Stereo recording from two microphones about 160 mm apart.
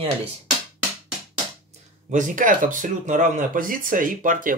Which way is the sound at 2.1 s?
55° right (ahead or behind).